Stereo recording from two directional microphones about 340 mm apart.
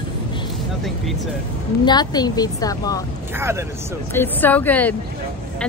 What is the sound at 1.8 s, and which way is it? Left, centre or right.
A woman's voice, centre.